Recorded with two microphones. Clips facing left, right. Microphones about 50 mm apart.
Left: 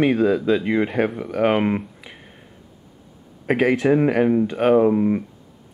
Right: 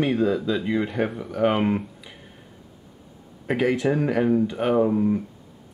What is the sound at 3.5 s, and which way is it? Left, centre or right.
Speech, left.